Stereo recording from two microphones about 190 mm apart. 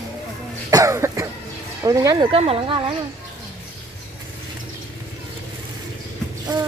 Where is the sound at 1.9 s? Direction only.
20° right (ahead or behind).